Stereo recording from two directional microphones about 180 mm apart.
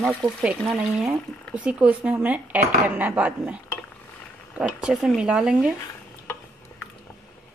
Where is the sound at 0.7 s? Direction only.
5° right (ahead or behind).